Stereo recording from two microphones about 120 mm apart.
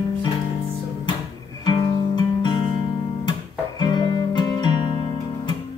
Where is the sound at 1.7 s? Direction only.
35° left (ahead or behind).